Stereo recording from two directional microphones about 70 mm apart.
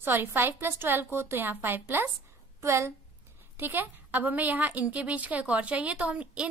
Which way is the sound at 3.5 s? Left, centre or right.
Right.